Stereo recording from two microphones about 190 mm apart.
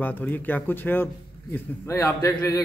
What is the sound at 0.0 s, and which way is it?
A man's voice, 10° left (ahead or behind).